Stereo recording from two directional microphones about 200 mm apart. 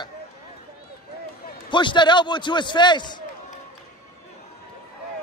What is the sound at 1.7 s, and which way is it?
A man's voice, 25° left (ahead or behind).